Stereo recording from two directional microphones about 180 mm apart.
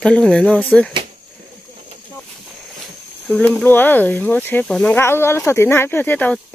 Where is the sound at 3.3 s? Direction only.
5° left (ahead or behind).